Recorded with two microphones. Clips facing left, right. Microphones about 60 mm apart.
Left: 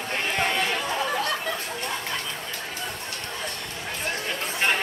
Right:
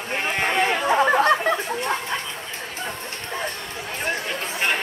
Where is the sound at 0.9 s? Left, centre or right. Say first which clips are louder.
Right 9 dB; right.